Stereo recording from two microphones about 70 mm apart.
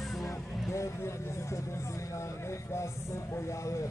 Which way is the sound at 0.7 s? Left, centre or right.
Left.